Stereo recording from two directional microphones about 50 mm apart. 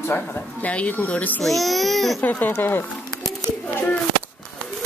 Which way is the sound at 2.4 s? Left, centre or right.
Left.